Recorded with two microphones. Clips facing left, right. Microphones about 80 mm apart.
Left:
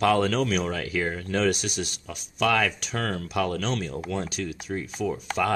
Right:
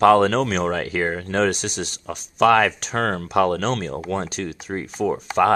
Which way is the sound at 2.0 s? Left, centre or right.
Right.